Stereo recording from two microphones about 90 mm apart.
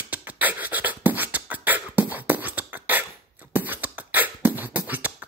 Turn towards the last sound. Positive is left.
turn(degrees=-20)  # may be behind; listen again after turning